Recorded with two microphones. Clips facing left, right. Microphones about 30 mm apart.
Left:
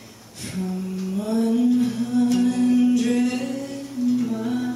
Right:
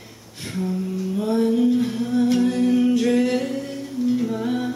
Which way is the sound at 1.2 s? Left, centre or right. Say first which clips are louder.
Right 1 dB; centre.